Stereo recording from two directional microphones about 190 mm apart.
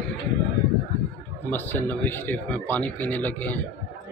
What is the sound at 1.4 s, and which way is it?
A man's voice, 10° left (ahead or behind).